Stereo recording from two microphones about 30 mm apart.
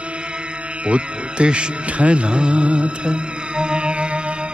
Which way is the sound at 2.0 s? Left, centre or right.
Right.